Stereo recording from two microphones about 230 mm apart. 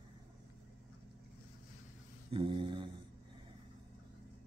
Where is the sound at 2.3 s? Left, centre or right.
Right.